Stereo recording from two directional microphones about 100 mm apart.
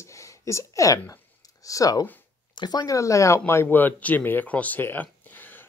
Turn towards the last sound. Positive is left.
turn(degrees=20)  # may be behind; listen again after turning